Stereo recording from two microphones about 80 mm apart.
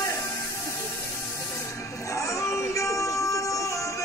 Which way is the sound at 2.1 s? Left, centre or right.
Left.